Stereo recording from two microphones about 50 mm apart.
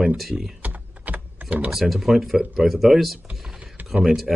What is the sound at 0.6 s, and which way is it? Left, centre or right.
Typing, right.